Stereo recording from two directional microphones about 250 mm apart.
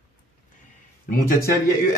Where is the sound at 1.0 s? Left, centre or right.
Left.